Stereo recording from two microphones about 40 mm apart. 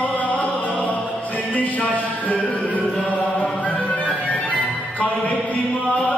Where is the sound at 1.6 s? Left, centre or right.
Left.